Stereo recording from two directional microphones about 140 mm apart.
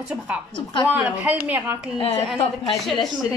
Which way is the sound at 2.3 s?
Centre (ahead or behind).